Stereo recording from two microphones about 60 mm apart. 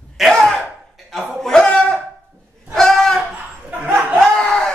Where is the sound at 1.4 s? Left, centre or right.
Centre.